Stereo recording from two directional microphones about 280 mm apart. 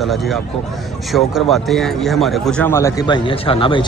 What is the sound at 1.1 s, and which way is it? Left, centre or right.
A man's voice, centre.